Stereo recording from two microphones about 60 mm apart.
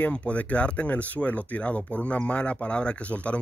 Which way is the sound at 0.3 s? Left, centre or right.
Left.